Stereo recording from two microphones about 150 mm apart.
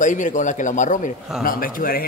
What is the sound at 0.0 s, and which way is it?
A man's voice, 55° left (ahead or behind).